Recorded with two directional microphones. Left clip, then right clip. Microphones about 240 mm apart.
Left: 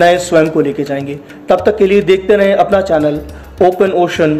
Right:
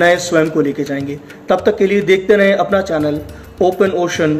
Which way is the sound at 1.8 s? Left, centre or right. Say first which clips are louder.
Left 4 dB; left.